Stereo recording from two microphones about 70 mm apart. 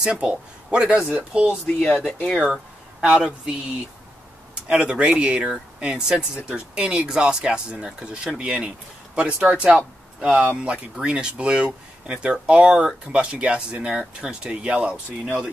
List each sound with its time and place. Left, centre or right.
0.0 s speech: centre
1.8 s speech: left
2.4 s a sound: centre
4.6 s speech: centre